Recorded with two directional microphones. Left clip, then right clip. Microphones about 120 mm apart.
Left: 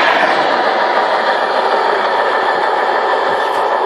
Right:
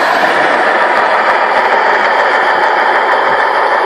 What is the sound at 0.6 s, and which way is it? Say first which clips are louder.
Train: right 3 dB; 35° left (ahead or behind).